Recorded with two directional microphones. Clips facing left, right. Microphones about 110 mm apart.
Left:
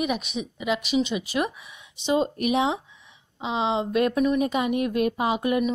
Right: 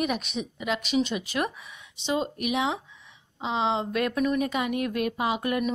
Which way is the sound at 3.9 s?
25° left (ahead or behind).